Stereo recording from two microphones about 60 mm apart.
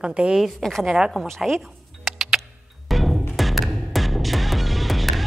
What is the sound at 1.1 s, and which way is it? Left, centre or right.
Speech, centre.